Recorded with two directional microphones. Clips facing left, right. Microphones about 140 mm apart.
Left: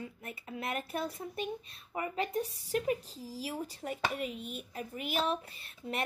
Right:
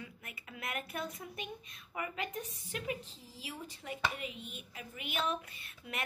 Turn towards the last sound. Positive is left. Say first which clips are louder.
# left 6 dB
turn(degrees=35)  # may be behind; listen again after turning